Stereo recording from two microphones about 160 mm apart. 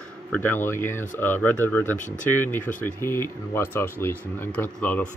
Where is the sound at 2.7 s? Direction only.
55° left (ahead or behind).